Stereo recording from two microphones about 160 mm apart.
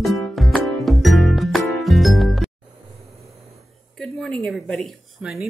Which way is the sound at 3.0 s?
Centre (ahead or behind).